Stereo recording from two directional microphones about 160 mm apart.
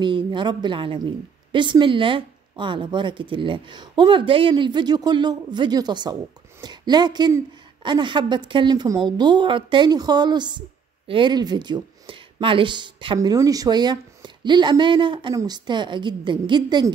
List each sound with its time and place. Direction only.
0.0 s a woman's voice: 30° right (ahead or behind)